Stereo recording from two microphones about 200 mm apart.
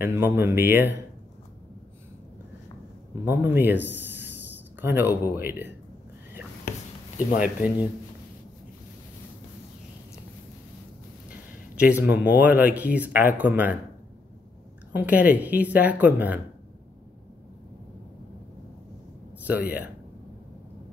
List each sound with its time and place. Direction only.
0.0 s speech: 10° right (ahead or behind)
3.3 s speech: 10° right (ahead or behind)
7.2 s speech: 40° left (ahead or behind)
11.2 s speech: 5° right (ahead or behind)
15.0 s speech: 10° right (ahead or behind)